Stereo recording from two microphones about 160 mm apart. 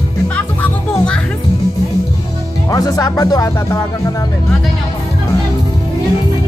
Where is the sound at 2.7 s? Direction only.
25° left (ahead or behind).